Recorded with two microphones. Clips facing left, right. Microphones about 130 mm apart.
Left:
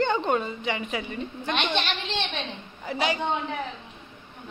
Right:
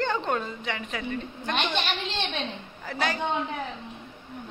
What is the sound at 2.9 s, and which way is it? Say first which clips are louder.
Speech: left 2 dB; 5° left (ahead or behind).